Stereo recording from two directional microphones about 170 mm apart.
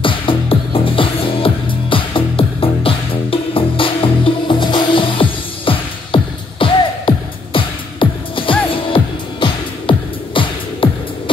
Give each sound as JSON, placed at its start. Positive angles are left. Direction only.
{"t": 0.0, "sound": "music", "side_deg": 30}